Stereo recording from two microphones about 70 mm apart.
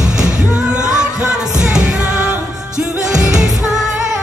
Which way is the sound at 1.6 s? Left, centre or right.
Centre.